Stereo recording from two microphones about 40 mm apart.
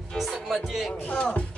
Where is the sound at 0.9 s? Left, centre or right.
Left.